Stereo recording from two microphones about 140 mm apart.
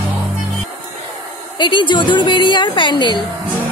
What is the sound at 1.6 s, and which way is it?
A woman's voice, 35° left (ahead or behind).